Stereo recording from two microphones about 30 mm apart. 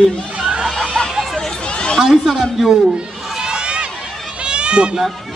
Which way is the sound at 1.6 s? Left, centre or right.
Left.